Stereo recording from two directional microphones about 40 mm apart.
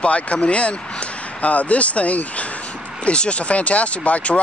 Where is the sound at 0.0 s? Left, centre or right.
Left.